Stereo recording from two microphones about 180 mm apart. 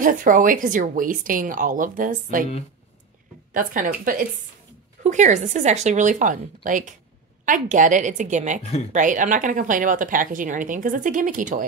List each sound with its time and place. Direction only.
0.0 s speech: 50° right (ahead or behind)
3.5 s speech: 50° right (ahead or behind)